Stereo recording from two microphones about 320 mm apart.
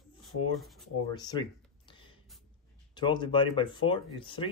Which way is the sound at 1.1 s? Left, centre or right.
Centre.